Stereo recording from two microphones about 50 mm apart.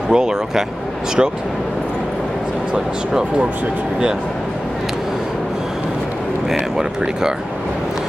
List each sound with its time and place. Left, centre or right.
0.1 s speech: centre
2.7 s speech: centre